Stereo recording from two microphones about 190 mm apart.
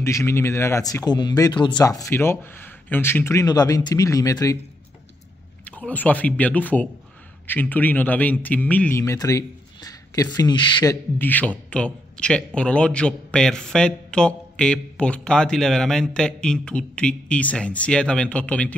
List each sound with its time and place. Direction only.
0.0 s speech: 15° left (ahead or behind)
5.7 s speech: 5° left (ahead or behind)
11.1 s a man's voice: 10° left (ahead or behind)